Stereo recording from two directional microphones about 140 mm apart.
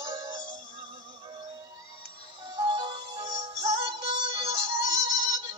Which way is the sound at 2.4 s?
35° right (ahead or behind).